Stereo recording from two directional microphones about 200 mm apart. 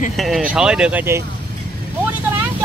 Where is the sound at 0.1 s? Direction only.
Centre (ahead or behind).